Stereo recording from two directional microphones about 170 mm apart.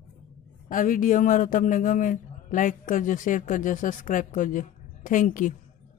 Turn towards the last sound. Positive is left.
turn(degrees=50)  # may be behind; listen again after turning